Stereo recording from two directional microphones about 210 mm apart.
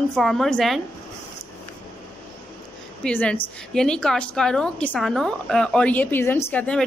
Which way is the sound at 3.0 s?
5° left (ahead or behind).